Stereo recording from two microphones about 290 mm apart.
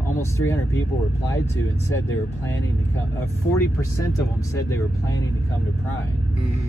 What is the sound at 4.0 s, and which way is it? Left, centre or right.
Speech, centre.